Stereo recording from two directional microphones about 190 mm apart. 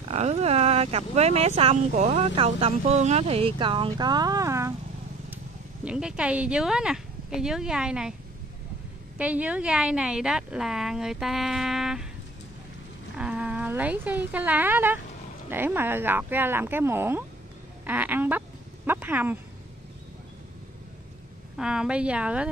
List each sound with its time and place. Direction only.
0.1 s speech: 35° right (ahead or behind); by 4.7 s 15° right (ahead or behind)
5.9 s a woman's voice: 5° right (ahead or behind)
9.2 s a woman's voice: 5° right (ahead or behind)
13.2 s speech: 5° right (ahead or behind)
18.9 s a sound: 10° right (ahead or behind)
21.5 s a woman's voice: 5° right (ahead or behind)